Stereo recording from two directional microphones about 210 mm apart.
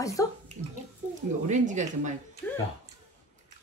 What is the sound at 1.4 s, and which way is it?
Speech, 35° right (ahead or behind).